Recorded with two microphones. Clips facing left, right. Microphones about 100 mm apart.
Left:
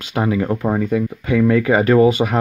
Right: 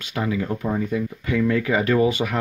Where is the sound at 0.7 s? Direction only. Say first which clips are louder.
Left 5 dB; 65° left (ahead or behind).